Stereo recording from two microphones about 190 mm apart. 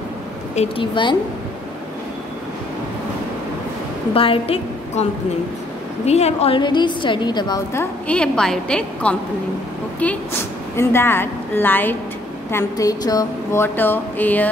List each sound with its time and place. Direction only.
0.6 s a woman's voice: 25° left (ahead or behind)
4.1 s a woman's voice: 30° left (ahead or behind)
6.0 s a woman's voice: 35° left (ahead or behind); by 9.1 s 5° left (ahead or behind)
10.8 s speech: 10° left (ahead or behind)